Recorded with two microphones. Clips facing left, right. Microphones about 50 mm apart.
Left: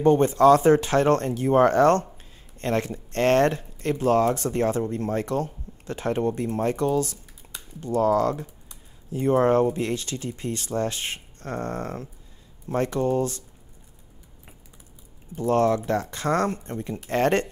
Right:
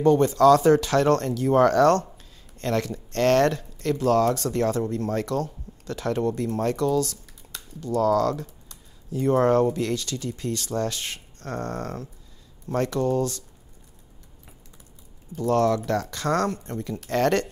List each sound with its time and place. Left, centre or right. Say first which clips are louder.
0.0 s speech: even; left
15.3 s speech: even; left